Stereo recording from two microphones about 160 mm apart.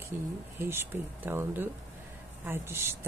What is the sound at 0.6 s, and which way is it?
Speech, 15° right (ahead or behind).